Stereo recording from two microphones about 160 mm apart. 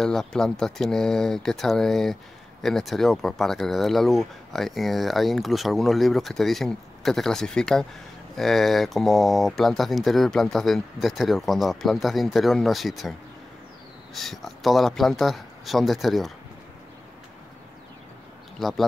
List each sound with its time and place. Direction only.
0.0 s speech: 5° left (ahead or behind)
14.1 s speech: centre (ahead or behind)
18.6 s speech: centre (ahead or behind)